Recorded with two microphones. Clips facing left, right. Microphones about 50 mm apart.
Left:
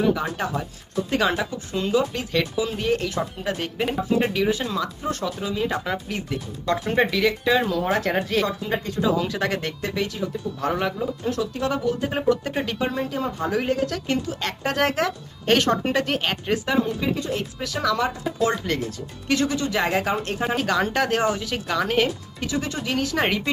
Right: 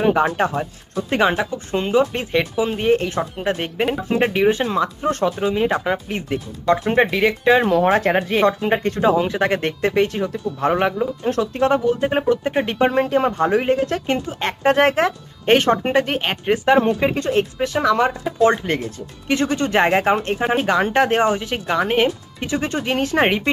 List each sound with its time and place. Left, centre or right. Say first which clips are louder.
0.0 s speech: right 6 dB; right
8.5 s speech: right 8 dB; right
9.1 s speech: right 5 dB; right
13.6 s speech: right 5 dB; right
16.7 s speech: right 7 dB; right